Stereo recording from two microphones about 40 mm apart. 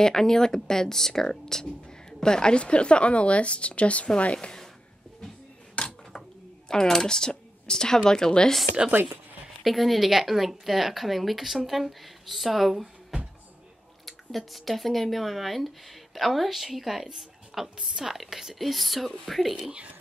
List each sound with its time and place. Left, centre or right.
0.0 s speech: centre; by 4.5 s left
5.8 s a sound: left
6.7 s speech: centre
9.6 s a woman's voice: centre
14.0 s a woman's voice: centre